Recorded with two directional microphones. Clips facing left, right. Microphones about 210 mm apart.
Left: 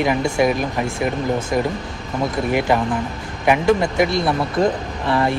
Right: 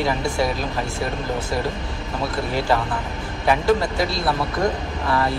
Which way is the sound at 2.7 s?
15° left (ahead or behind).